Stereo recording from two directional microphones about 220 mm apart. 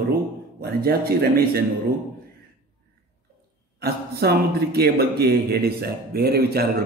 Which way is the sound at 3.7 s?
45° right (ahead or behind).